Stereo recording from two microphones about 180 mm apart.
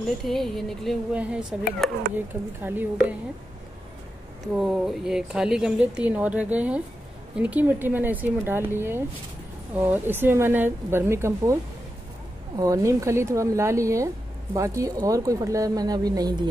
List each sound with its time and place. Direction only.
0.2 s speech: centre (ahead or behind)
4.6 s speech: centre (ahead or behind)
12.5 s speech: 20° right (ahead or behind)